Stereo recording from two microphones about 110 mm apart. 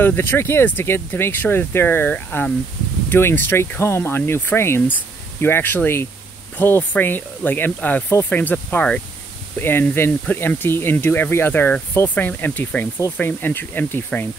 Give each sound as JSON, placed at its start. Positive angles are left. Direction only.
{"t": 0.0, "sound": "speech", "side_deg": 20}